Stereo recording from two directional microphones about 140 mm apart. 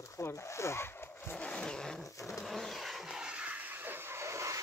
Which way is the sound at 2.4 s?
Centre (ahead or behind).